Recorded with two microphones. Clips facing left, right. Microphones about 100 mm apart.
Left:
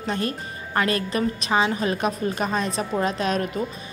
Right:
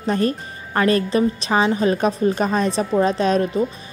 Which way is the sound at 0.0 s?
35° right (ahead or behind).